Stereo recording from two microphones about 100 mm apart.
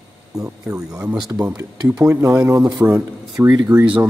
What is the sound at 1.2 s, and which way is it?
Speech, 35° right (ahead or behind).